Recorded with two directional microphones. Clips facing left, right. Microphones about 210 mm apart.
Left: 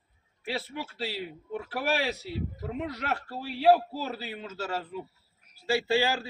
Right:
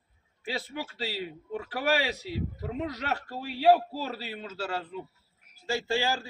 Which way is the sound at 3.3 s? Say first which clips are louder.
Even; 10° right (ahead or behind).